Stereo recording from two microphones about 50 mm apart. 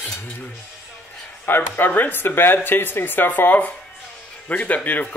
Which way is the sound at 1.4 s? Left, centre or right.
Left.